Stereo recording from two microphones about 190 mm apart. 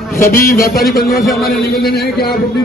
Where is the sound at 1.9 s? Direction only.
55° left (ahead or behind).